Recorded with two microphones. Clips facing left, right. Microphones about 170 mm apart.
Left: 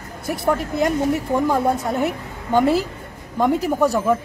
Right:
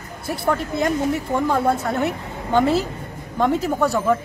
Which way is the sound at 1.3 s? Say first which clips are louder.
Even; 15° left (ahead or behind).